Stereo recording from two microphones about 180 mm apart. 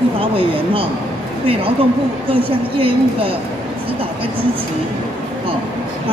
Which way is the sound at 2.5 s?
30° right (ahead or behind).